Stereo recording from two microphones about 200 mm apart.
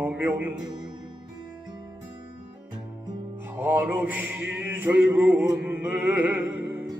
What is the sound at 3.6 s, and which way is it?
Mantra, 10° right (ahead or behind).